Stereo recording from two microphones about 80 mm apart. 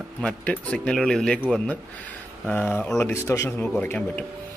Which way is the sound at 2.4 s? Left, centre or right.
Left.